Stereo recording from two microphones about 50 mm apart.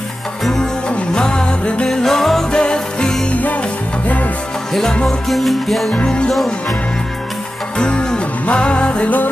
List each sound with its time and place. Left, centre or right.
0.5 s music: centre
2.0 s music: centre
3.3 s music: left
5.0 s music: centre
6.0 s music: centre
7.8 s music: centre